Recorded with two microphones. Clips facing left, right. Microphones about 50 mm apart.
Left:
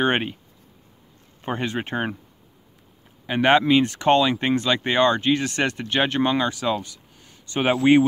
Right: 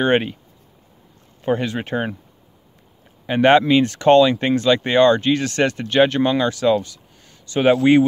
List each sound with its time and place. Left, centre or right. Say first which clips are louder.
0.0 s speech: right 4 dB; centre
1.4 s speech: right 5 dB; left
3.3 s speech: right 4 dB; centre